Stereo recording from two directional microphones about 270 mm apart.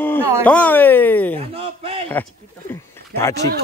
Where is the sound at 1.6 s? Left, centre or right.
Right.